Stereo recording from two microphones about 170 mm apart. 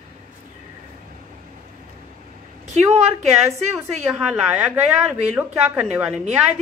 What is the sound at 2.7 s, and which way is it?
Speech, 40° right (ahead or behind).